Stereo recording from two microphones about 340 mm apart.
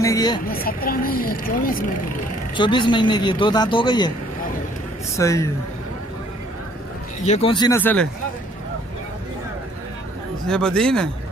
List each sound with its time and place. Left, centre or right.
0.0 s speech: centre
0.5 s speech: left
2.5 s speech: centre
5.1 s speech: centre
7.2 s speech: centre
10.5 s speech: centre